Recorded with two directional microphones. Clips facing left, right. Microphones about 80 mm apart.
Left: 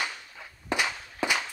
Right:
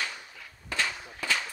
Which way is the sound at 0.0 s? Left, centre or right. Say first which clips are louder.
Left 2 dB; centre.